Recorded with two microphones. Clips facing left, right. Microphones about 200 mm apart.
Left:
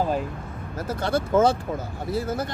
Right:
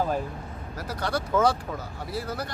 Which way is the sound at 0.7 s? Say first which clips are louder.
Left 5 dB; 25° left (ahead or behind).